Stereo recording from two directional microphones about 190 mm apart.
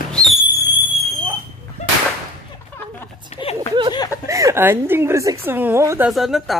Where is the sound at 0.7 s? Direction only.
10° right (ahead or behind).